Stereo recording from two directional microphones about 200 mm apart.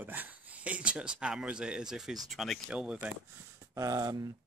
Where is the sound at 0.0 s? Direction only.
10° right (ahead or behind).